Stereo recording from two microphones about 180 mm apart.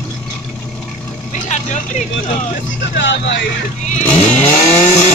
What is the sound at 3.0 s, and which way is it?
Speech, 80° left.